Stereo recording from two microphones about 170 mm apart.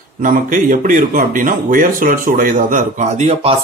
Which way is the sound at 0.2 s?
50° right (ahead or behind).